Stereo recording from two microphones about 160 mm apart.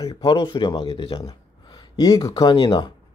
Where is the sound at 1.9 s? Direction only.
25° left (ahead or behind).